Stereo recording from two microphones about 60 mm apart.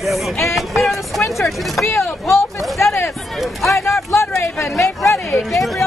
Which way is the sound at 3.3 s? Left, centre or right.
Centre.